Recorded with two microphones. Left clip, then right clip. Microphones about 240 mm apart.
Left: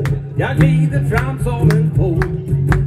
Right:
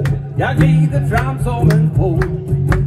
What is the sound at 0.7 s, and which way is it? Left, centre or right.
Music, centre.